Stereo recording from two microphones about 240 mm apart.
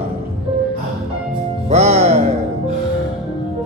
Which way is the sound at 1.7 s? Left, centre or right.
Right.